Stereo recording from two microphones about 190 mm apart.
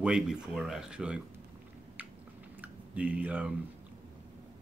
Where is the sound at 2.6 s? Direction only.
5° right (ahead or behind).